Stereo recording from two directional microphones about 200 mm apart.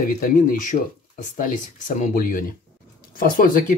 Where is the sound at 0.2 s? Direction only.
40° left (ahead or behind).